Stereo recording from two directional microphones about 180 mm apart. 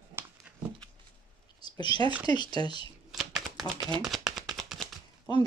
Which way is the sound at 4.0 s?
Centre (ahead or behind).